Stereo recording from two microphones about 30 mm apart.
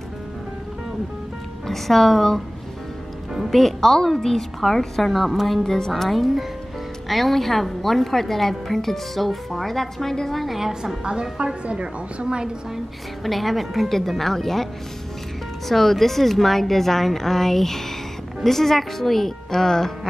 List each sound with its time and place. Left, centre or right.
1.7 s a woman's voice: centre
3.4 s a woman's voice: centre
6.1 s a woman's voice: centre
11.1 s a woman's voice: right
13.2 s a woman's voice: centre
15.7 s a woman's voice: centre